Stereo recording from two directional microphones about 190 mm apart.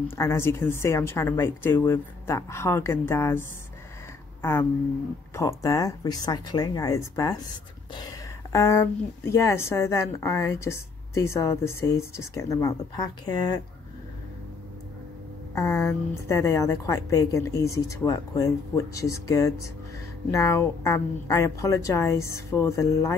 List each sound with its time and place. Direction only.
0.1 s speech: 15° left (ahead or behind)
4.4 s a sound: 15° left (ahead or behind)
5.3 s speech: 15° left (ahead or behind)
15.5 s speech: 15° left (ahead or behind)